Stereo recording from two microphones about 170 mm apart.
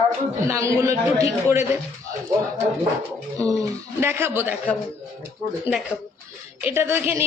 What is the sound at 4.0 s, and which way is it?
Speech, 15° right (ahead or behind).